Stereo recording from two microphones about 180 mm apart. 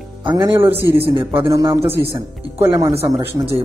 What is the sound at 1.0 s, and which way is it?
A man's voice, 30° right (ahead or behind).